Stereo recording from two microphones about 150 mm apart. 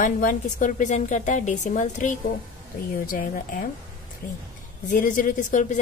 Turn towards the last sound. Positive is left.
turn(degrees=55)  # may be behind; listen again after turning